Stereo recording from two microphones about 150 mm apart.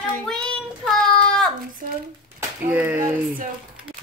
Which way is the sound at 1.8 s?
60° right (ahead or behind).